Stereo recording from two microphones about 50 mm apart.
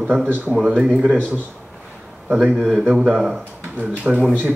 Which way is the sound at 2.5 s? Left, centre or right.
Centre.